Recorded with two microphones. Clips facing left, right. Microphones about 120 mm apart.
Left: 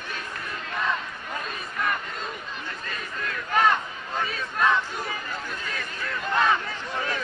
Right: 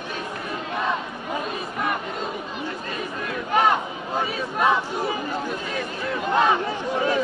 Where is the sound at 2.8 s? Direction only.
15° right (ahead or behind).